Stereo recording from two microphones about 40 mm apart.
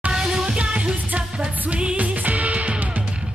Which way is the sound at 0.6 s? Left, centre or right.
Right.